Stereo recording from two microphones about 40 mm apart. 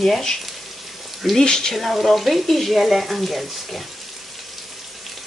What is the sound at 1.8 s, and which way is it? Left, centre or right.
Speech, centre.